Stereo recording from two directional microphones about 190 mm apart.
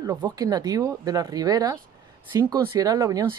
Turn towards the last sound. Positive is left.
turn(degrees=-15)  # may be behind; listen again after turning